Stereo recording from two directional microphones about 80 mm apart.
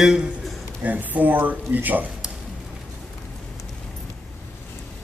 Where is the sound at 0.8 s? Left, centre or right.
Right.